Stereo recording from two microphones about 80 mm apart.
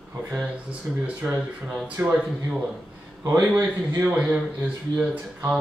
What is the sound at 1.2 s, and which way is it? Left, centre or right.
Speech, centre.